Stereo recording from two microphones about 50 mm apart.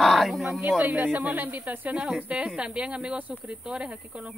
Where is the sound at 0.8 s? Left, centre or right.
Right.